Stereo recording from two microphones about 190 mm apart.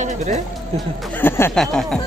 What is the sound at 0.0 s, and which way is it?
Speech, 40° right (ahead or behind).